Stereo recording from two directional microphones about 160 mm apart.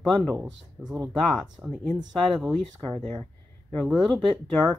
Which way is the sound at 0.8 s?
20° right (ahead or behind).